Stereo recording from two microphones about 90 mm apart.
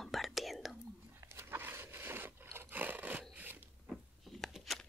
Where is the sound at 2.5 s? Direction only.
20° right (ahead or behind).